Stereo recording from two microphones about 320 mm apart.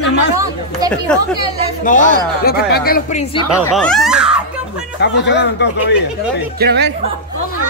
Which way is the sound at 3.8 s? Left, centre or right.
Centre.